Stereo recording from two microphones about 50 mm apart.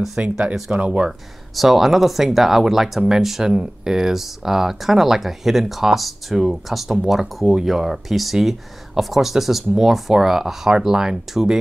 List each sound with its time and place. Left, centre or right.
0.1 s speech: right
1.6 s speech: centre